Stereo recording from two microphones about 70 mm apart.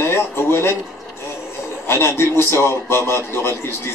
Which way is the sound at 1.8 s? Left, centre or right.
Left.